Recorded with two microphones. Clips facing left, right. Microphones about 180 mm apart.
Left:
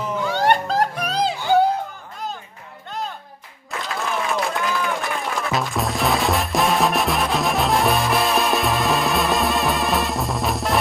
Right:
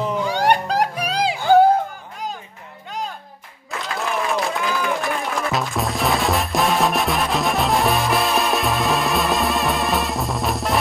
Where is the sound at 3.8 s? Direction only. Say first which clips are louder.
Right 1 dB; centre (ahead or behind).